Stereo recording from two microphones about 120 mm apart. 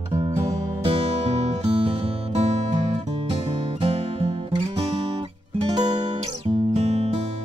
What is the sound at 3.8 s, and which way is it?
Music, 55° right (ahead or behind).